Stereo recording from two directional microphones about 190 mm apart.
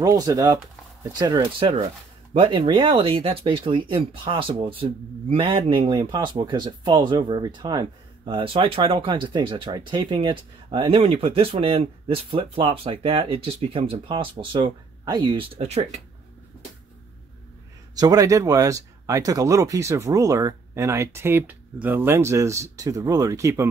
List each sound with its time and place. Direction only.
0.0 s speech: 20° right (ahead or behind); by 16.0 s 35° right (ahead or behind)
17.9 s speech: 20° right (ahead or behind)